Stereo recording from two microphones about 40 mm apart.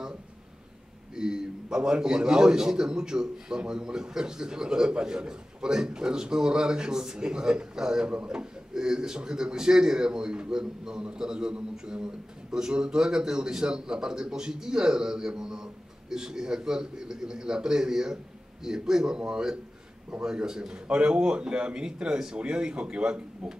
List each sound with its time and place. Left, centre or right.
1.1 s a man's voice: centre
20.7 s a man's voice: right